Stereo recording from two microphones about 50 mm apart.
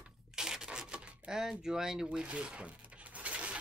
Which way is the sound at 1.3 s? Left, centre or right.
Centre.